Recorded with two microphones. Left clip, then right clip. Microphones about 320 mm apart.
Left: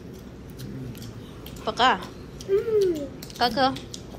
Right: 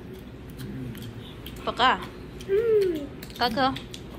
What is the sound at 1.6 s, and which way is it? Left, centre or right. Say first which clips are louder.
Speech: left 1 dB; centre.